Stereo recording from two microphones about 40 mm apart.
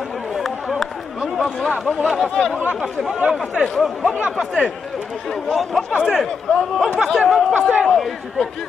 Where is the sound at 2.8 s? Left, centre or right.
Centre.